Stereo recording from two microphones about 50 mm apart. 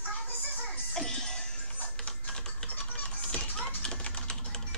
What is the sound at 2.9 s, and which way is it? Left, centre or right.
Music, left.